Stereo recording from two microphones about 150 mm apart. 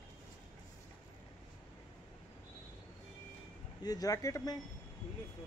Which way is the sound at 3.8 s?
25° left (ahead or behind).